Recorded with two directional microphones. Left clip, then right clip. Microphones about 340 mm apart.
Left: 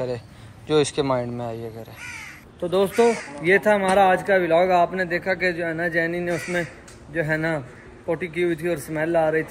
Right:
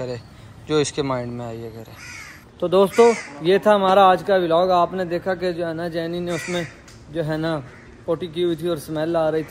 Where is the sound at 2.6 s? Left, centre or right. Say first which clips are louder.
Right 4 dB; centre.